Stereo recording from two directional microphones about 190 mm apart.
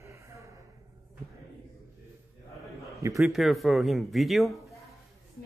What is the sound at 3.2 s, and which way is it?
Speech, centre (ahead or behind).